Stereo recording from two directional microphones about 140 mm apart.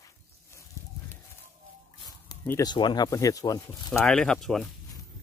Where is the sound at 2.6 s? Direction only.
30° left (ahead or behind).